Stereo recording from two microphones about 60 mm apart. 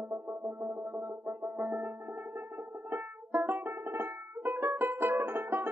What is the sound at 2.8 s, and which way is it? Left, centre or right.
Music, right.